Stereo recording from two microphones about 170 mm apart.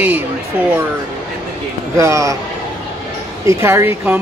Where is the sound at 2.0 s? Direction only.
20° right (ahead or behind).